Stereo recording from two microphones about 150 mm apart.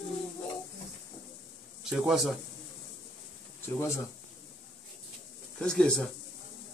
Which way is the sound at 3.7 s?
20° left (ahead or behind).